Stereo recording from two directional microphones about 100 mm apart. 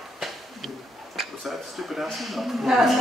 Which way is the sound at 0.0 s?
Centre (ahead or behind).